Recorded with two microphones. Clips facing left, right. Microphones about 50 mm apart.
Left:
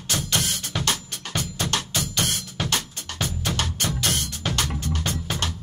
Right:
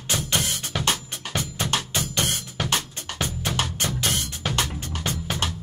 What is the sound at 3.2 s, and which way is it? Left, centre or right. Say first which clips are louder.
Music: even; centre.